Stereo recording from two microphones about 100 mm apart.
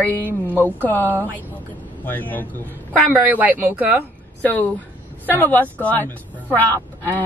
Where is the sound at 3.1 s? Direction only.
15° right (ahead or behind).